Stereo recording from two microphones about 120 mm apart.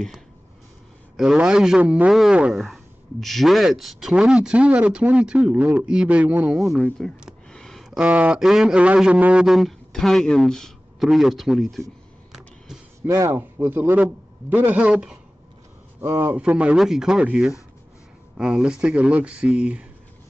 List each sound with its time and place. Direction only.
1.1 s a man's voice: 5° right (ahead or behind)
7.2 s a sound: 5° left (ahead or behind)
8.0 s speech: 10° right (ahead or behind)
13.0 s a man's voice: 20° right (ahead or behind)
16.0 s a man's voice: 20° right (ahead or behind)